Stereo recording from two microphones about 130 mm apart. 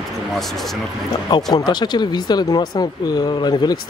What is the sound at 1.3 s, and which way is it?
Speech, 30° left (ahead or behind).